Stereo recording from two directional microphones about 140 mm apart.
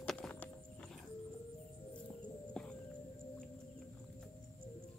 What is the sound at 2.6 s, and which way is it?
Whale vocalization, 5° left (ahead or behind).